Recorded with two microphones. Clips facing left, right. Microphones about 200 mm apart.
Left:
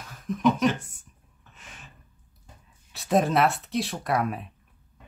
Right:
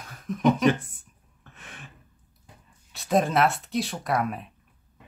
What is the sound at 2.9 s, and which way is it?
Speech, centre (ahead or behind).